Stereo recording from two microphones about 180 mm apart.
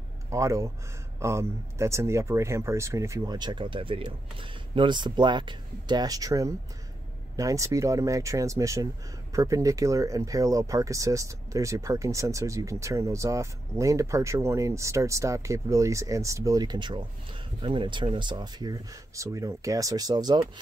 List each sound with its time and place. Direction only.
0.3 s speech: 15° right (ahead or behind)